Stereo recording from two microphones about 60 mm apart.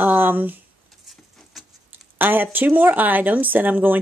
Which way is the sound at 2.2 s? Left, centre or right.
Right.